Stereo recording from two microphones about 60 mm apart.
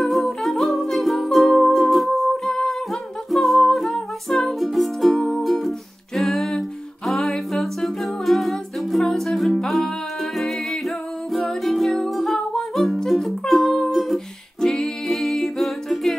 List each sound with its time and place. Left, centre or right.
0.0 s music: centre
7.1 s humming: centre
10.3 s music: centre